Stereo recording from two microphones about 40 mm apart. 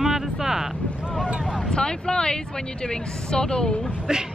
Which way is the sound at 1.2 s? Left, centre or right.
Right.